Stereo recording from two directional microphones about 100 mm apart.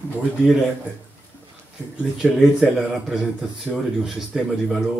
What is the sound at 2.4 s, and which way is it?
Speech, 5° right (ahead or behind).